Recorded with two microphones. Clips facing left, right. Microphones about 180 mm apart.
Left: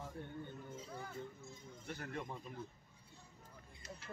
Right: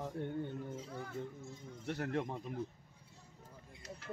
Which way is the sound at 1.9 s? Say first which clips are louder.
Right 8 dB; 75° right (ahead or behind).